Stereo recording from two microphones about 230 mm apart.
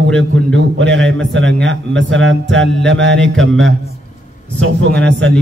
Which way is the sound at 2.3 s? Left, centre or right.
Right.